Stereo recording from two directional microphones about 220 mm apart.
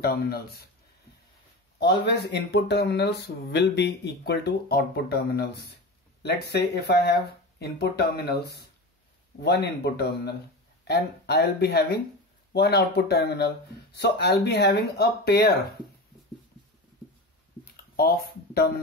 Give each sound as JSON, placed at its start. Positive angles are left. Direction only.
{"t": 0.0, "sound": "speech", "side_deg": 45}
{"t": 1.8, "sound": "speech", "side_deg": 50}
{"t": 17.9, "sound": "speech", "side_deg": 45}